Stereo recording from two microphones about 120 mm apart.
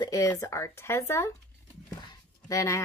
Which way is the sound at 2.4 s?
25° left (ahead or behind).